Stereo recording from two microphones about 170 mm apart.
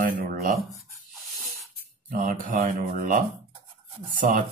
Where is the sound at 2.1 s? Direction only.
50° right (ahead or behind).